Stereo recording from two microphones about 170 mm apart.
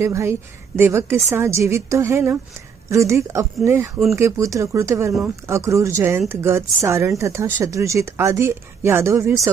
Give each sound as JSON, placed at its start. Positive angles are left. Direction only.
{"t": 0.0, "sound": "speech", "side_deg": -15}